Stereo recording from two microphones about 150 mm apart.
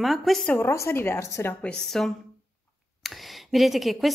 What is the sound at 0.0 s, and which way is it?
Speech, centre (ahead or behind).